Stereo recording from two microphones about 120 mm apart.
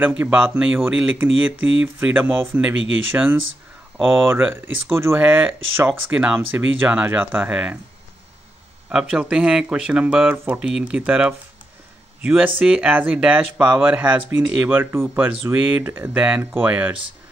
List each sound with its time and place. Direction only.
0.0 s speech: 15° right (ahead or behind)
8.8 s speech: 5° right (ahead or behind)